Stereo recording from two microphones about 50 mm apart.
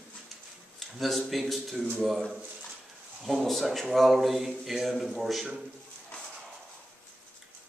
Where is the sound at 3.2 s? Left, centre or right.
Centre.